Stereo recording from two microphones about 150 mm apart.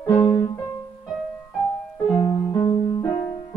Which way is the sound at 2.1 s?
20° left (ahead or behind).